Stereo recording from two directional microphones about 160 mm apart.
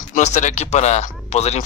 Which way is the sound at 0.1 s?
50° left (ahead or behind).